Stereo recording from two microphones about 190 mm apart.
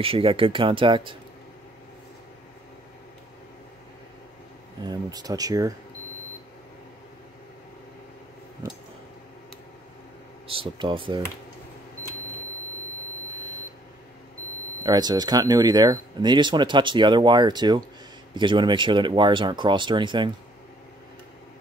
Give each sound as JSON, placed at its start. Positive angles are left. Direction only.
{"t": 0.0, "sound": "speech", "side_deg": -30}
{"t": 4.8, "sound": "speech", "side_deg": -20}
{"t": 10.5, "sound": "speech", "side_deg": -25}
{"t": 14.8, "sound": "speech", "side_deg": -20}